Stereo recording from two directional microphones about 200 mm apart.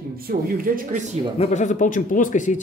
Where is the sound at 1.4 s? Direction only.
35° left (ahead or behind).